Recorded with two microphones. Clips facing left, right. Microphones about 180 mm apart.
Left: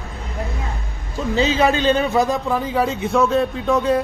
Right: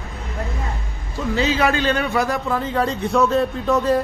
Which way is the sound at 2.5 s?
10° left (ahead or behind).